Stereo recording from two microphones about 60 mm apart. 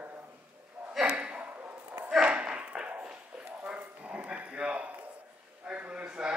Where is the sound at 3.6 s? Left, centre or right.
Right.